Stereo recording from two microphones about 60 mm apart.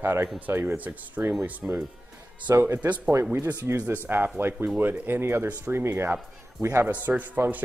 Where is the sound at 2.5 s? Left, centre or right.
Right.